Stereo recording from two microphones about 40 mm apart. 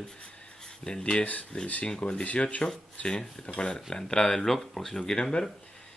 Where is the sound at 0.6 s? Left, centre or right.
Centre.